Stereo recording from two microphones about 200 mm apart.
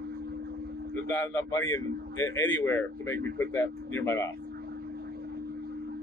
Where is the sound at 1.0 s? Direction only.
10° left (ahead or behind).